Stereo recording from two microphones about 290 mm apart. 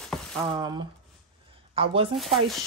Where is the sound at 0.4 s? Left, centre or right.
Centre.